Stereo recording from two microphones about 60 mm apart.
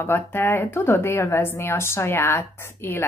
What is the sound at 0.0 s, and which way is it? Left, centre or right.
A woman's voice, left.